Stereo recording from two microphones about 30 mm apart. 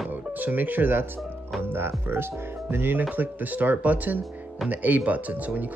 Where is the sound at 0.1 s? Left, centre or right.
Right.